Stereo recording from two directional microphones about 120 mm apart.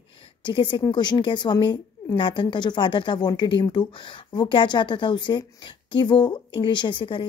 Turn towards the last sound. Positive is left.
turn(degrees=45)  # may be behind; listen again after turning